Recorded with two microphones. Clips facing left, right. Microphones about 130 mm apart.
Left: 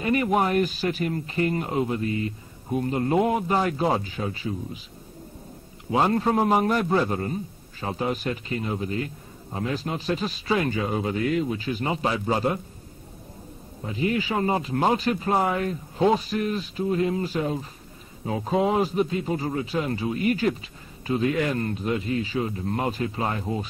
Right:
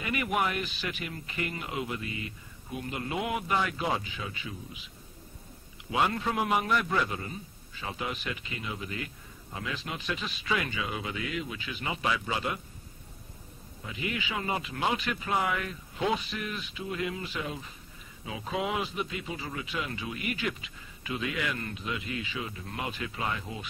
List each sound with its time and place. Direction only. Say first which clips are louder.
0.0 s a man's voice: left 7 dB; 35° left (ahead or behind)
5.9 s a man's voice: left 7 dB; 35° left (ahead or behind)
13.8 s a man's voice: left 10 dB; 35° left (ahead or behind)